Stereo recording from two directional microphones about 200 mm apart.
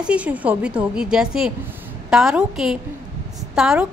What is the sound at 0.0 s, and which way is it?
A woman's voice, 5° right (ahead or behind).